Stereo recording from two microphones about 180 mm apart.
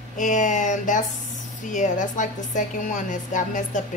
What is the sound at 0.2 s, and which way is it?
A woman's voice, 45° left (ahead or behind).